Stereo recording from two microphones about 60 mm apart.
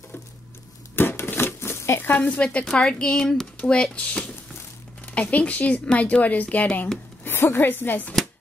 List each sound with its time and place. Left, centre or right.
0.9 s a sound: left
2.1 s speech: left
2.6 s a woman's voice: centre; by 6.9 s left
7.2 s speech: left